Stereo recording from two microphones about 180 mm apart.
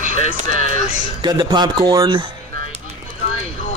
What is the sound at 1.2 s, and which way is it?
Speech, 25° right (ahead or behind).